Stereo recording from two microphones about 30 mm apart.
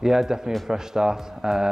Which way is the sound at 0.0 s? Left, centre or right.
Centre.